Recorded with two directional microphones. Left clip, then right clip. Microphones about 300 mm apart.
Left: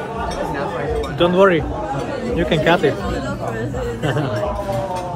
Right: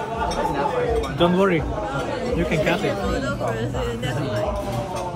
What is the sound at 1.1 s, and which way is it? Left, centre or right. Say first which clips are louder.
Speech: left 7 dB; centre.